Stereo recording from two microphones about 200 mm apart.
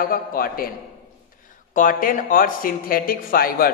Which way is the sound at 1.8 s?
45° left (ahead or behind).